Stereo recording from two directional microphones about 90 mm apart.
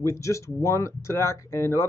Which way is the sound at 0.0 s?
35° left (ahead or behind).